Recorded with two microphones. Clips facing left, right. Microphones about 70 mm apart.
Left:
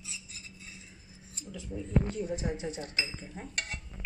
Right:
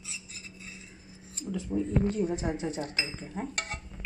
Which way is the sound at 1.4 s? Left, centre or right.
Right.